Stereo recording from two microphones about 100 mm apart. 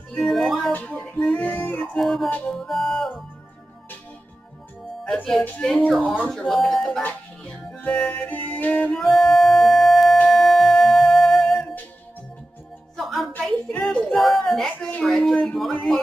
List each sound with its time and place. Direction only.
0.2 s music: centre (ahead or behind)
0.7 s music: 10° left (ahead or behind)
2.0 s music: centre (ahead or behind)
2.2 s music: 20° left (ahead or behind)
2.5 s music: 5° left (ahead or behind)
5.0 s music: 10° left (ahead or behind)
5.6 s speech: 5° left (ahead or behind)
7.0 s music: 15° left (ahead or behind)
12.9 s music: centre (ahead or behind)
13.8 s speech: centre (ahead or behind)
15.7 s music: 5° left (ahead or behind)